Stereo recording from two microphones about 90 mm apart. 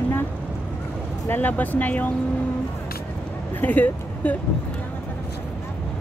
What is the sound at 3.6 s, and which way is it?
Speech, 20° left (ahead or behind).